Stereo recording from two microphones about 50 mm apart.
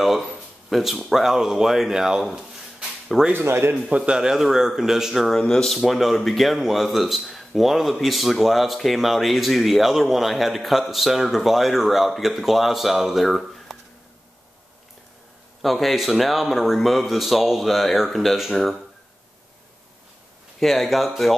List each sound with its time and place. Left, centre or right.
0.0 s speech: centre
3.4 s a man's voice: right
3.7 s a man's voice: right
4.2 s speech: centre
5.4 s speech: centre
5.7 s speech: centre
15.6 s speech: centre
20.5 s speech: centre